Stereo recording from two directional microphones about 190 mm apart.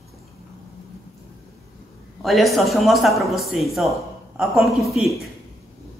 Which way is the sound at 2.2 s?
Centre (ahead or behind).